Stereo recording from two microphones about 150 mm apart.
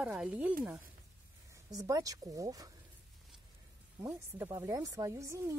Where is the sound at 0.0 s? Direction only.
10° right (ahead or behind).